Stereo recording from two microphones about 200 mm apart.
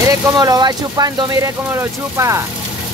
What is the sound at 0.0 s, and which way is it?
Speech, 15° right (ahead or behind).